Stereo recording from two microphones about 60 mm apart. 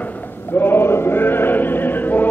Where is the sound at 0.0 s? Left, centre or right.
Left.